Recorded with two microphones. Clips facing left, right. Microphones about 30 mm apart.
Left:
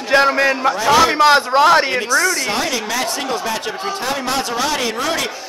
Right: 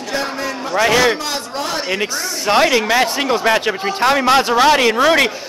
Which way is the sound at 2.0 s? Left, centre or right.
Right.